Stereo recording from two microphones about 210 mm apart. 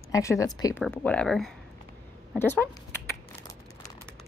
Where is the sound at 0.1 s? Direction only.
15° left (ahead or behind).